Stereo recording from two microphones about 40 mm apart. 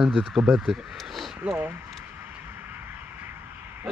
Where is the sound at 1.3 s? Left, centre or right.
Right.